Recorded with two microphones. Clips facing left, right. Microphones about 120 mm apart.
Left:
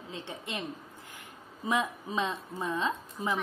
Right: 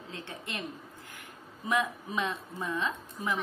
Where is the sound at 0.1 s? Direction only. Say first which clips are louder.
Left 2 dB; 20° left (ahead or behind).